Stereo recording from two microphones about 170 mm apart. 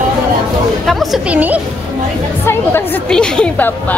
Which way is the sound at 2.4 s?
15° left (ahead or behind).